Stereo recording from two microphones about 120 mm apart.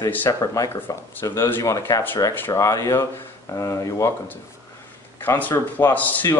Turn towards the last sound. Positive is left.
turn(degrees=15)  # may be behind; listen again after turning